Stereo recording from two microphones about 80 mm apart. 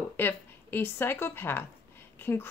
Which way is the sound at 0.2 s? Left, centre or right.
Left.